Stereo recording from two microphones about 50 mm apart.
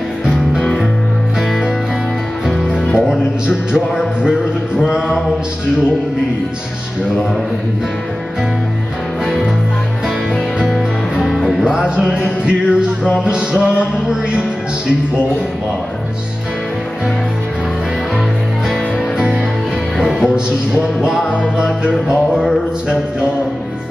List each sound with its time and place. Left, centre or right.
2.7 s music: centre
10.7 s music: centre
11.6 s music: centre
18.7 s music: centre
22.0 s music: centre